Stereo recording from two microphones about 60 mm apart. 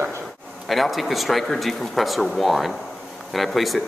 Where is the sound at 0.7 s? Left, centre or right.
Centre.